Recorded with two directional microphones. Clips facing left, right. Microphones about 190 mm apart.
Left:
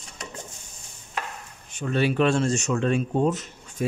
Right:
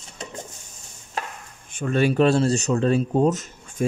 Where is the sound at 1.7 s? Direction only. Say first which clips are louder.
Right 3 dB; 50° right (ahead or behind).